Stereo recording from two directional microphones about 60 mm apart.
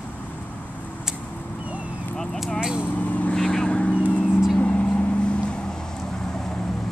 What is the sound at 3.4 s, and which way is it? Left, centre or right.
Vehicle, centre.